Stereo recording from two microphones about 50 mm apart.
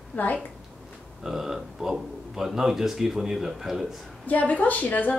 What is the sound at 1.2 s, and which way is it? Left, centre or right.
A man's voice, centre.